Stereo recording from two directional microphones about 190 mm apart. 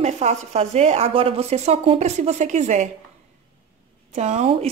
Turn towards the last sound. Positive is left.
turn(degrees=-35)  # may be behind; listen again after turning